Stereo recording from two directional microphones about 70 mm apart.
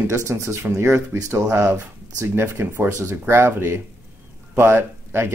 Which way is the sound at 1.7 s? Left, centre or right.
Right.